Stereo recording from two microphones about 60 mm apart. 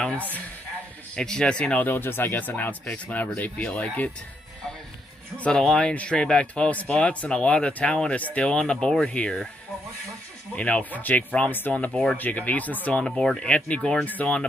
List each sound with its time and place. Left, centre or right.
1.1 s speech: centre
1.8 s speech: left
5.4 s speech: centre
10.5 s speech: left
13.0 s speech: centre